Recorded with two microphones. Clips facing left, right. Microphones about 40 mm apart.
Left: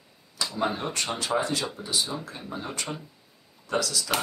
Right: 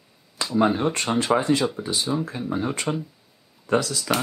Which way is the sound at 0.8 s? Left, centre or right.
Right.